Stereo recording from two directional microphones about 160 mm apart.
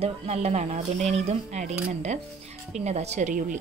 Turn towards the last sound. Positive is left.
turn(degrees=-50)  # may be behind; listen again after turning